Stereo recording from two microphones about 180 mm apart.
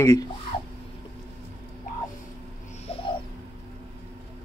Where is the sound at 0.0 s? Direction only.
20° left (ahead or behind).